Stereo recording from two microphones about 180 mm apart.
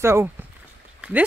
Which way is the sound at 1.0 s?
5° right (ahead or behind).